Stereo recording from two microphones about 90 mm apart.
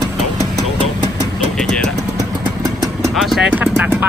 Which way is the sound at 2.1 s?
40° right (ahead or behind).